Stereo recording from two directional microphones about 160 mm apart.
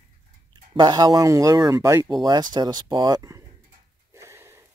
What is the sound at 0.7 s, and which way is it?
Speech, 25° right (ahead or behind).